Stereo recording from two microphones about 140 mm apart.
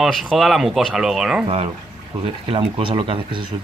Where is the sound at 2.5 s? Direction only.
40° right (ahead or behind).